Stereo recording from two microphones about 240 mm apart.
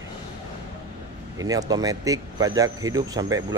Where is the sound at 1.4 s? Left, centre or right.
Centre.